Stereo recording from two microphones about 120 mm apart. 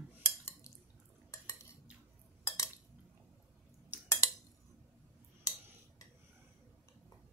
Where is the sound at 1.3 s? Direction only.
25° left (ahead or behind).